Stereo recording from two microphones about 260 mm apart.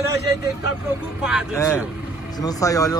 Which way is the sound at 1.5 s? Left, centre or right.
Centre.